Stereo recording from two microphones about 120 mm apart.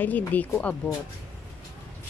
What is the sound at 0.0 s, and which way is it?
Speech, 15° left (ahead or behind).